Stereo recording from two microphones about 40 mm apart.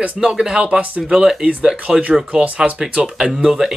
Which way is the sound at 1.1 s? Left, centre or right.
Centre.